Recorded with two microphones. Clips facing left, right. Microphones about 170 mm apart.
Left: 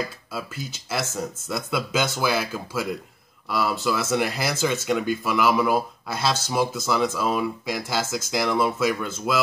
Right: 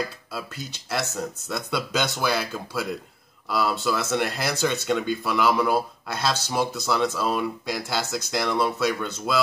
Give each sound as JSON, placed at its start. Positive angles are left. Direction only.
{"t": 0.3, "sound": "speech", "side_deg": 0}